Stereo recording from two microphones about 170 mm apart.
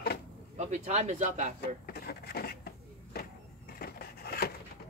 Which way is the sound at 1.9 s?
65° left (ahead or behind).